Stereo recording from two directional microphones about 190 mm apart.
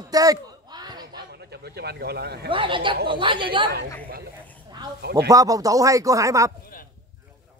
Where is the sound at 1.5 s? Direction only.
60° right (ahead or behind).